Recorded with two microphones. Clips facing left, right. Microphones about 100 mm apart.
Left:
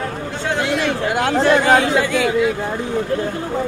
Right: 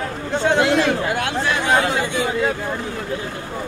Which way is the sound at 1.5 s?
65° left (ahead or behind).